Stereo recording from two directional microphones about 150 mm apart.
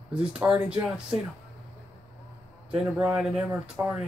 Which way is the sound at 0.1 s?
5° right (ahead or behind).